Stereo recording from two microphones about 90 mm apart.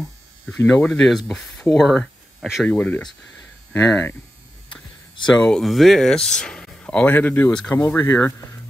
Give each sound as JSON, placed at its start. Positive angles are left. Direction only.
{"t": 0.6, "sound": "speech", "side_deg": 25}
{"t": 0.8, "sound": "speech", "side_deg": 10}
{"t": 2.6, "sound": "speech", "side_deg": 15}
{"t": 5.2, "sound": "speech", "side_deg": 10}